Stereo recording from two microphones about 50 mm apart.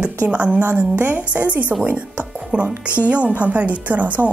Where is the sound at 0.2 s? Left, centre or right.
Right.